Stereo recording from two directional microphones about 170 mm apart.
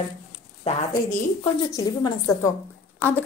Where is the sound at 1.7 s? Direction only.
20° left (ahead or behind).